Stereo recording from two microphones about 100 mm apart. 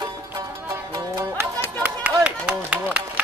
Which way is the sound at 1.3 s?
15° right (ahead or behind).